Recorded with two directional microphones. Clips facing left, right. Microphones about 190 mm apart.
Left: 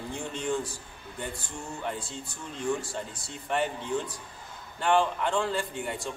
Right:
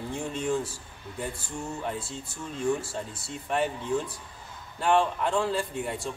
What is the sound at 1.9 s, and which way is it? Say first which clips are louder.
Speech: right 1 dB; 5° right (ahead or behind).